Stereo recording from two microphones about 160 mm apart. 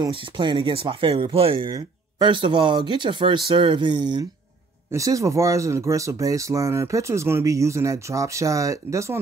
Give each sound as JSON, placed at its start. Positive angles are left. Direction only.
{"t": 0.0, "sound": "speech", "side_deg": -30}